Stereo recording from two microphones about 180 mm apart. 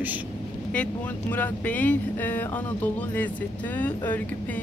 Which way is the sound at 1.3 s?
10° left (ahead or behind).